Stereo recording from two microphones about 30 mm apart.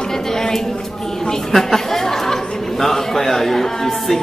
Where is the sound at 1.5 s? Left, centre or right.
Centre.